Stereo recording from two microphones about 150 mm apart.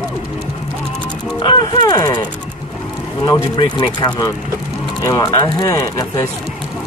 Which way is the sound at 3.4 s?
30° left (ahead or behind).